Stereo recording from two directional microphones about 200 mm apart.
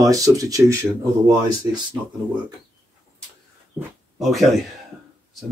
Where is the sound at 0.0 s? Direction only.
15° right (ahead or behind).